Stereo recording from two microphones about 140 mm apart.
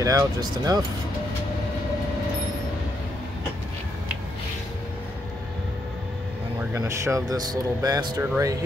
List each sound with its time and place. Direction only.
0.0 s speech: 25° right (ahead or behind)
6.7 s speech: 20° right (ahead or behind)